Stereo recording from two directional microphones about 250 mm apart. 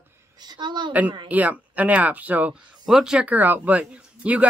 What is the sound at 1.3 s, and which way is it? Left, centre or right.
Speech, centre.